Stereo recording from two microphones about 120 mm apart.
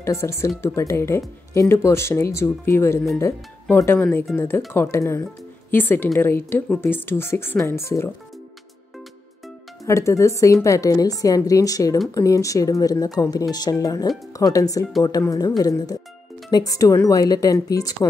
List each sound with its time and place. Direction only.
0.0 s speech: 25° left (ahead or behind)
9.8 s speech: 25° left (ahead or behind)